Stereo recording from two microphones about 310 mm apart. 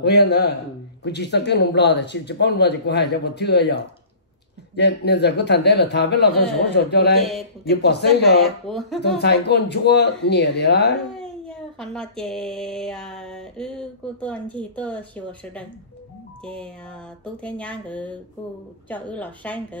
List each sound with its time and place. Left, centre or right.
0.0 s speech: left
8.4 s speech: centre
9.0 s speech: left
11.1 s a sound: centre
16.4 s speech: centre